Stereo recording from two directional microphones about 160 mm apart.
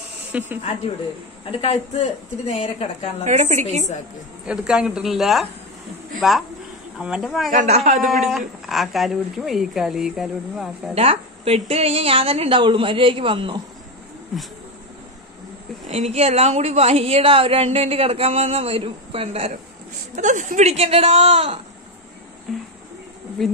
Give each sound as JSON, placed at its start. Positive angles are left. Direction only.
{"t": 0.3, "sound": "speech", "side_deg": -10}
{"t": 1.6, "sound": "a woman's voice", "side_deg": 40}
{"t": 3.3, "sound": "a woman's voice", "side_deg": -50}
{"t": 4.5, "sound": "a woman's voice", "side_deg": -5}
{"t": 7.5, "sound": "a woman's voice", "side_deg": -45}
{"t": 8.1, "sound": "speech", "side_deg": 0}
{"t": 11.0, "sound": "a woman's voice", "side_deg": -40}
{"t": 15.9, "sound": "a woman's voice", "side_deg": -40}
{"t": 20.2, "sound": "a woman's voice", "side_deg": -50}